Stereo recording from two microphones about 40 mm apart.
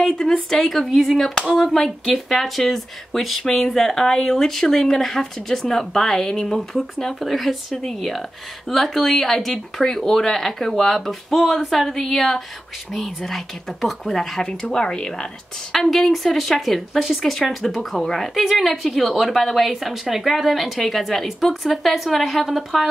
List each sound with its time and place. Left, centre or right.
0.2 s a woman's voice: centre
14.4 s speech: left
15.7 s speech: centre
19.8 s speech: centre